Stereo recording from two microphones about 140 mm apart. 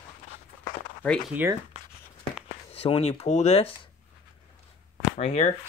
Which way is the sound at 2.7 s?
45° left (ahead or behind).